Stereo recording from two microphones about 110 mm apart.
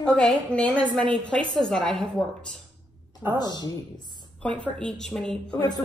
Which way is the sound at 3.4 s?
40° left (ahead or behind).